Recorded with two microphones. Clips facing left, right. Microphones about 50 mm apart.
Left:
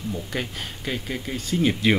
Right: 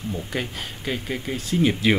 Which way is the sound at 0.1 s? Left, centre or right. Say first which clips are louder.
Right 2 dB; centre.